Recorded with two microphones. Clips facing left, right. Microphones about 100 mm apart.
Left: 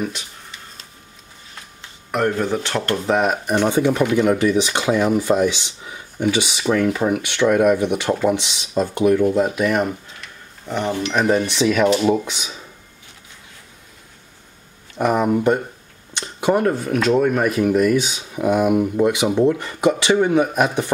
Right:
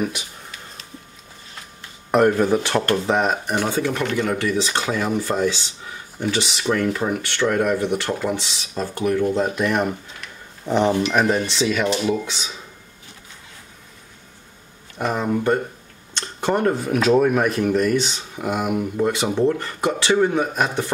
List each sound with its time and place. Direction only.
2.1 s speech: 15° right (ahead or behind)
3.1 s speech: 5° left (ahead or behind)
3.7 s speech: 15° left (ahead or behind)
9.3 s speech: 5° left (ahead or behind)
10.6 s speech: 20° right (ahead or behind)
11.5 s speech: 10° left (ahead or behind)
15.0 s speech: 15° left (ahead or behind)